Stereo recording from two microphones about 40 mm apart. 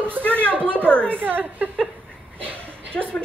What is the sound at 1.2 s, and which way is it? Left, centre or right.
Speech, right.